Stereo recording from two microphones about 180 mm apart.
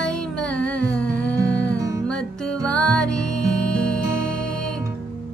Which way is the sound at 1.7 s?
20° right (ahead or behind).